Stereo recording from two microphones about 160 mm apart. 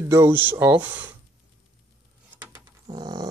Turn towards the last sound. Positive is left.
turn(degrees=-25)  # may be behind; listen again after turning